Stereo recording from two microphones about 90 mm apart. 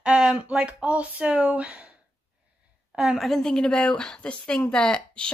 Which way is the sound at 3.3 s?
5° left (ahead or behind).